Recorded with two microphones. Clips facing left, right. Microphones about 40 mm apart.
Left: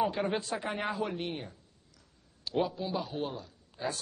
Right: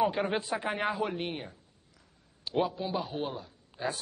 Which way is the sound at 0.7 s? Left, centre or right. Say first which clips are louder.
Right 3 dB; centre.